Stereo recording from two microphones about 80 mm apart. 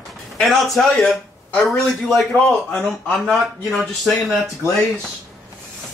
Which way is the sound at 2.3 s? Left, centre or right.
Centre.